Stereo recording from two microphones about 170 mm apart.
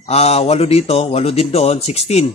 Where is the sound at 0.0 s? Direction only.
40° left (ahead or behind).